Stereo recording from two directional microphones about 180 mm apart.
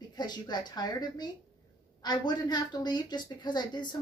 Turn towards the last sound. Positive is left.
turn(degrees=25)  # may be behind; listen again after turning